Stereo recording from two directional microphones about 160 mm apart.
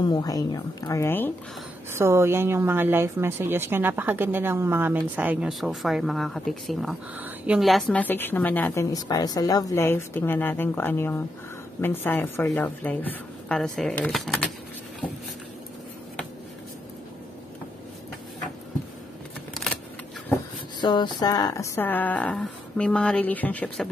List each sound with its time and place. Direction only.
0.1 s a woman's voice: 20° left (ahead or behind)
1.9 s a woman's voice: 15° right (ahead or behind); by 8.8 s 10° left (ahead or behind)
8.9 s speech: 25° left (ahead or behind); by 14.5 s centre (ahead or behind)
20.8 s speech: 25° left (ahead or behind); by 23.9 s 10° left (ahead or behind)